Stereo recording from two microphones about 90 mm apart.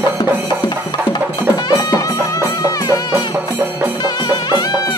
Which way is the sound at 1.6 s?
40° left (ahead or behind).